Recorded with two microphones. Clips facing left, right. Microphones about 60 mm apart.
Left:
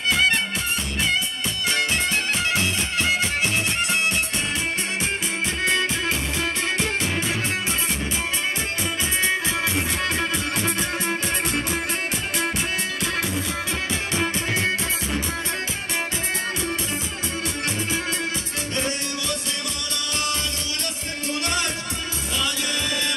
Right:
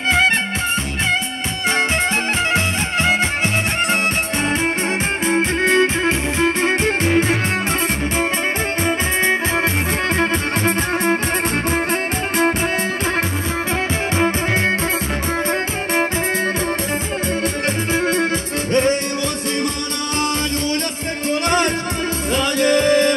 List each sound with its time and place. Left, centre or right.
2.5 s music: right
5.3 s music: right
8.8 s music: right
14.1 s music: right
17.9 s music: right
21.3 s music: right